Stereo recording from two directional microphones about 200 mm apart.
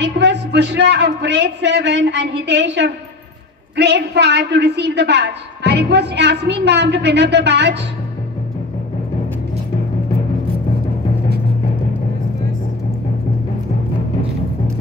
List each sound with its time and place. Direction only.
0.0 s a man's voice: 60° right (ahead or behind)